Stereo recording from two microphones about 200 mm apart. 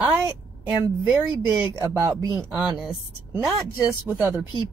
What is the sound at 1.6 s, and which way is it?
A woman's voice, 5° right (ahead or behind).